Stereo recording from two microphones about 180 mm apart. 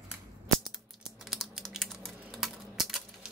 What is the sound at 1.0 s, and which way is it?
Typing, centre (ahead or behind).